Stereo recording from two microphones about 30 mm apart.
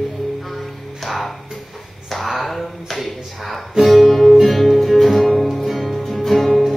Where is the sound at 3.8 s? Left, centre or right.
Centre.